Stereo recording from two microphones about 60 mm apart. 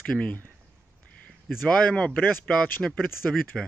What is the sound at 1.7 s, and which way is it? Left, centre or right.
A man's voice, centre.